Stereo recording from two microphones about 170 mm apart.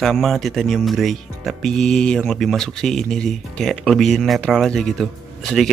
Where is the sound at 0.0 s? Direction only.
Centre (ahead or behind).